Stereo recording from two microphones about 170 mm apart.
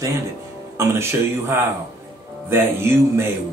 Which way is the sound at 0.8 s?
15° right (ahead or behind).